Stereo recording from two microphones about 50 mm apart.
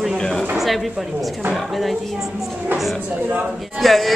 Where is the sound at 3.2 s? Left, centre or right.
Right.